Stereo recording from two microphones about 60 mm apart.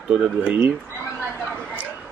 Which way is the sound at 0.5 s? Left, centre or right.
Right.